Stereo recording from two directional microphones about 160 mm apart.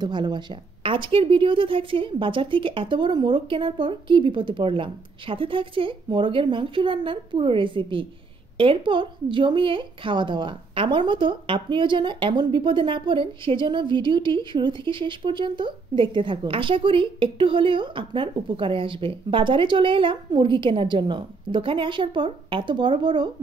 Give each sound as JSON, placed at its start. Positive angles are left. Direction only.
{"t": 0.0, "sound": "a woman's voice", "side_deg": -30}